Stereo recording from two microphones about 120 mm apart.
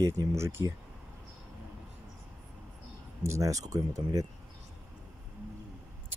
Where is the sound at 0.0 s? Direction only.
25° right (ahead or behind).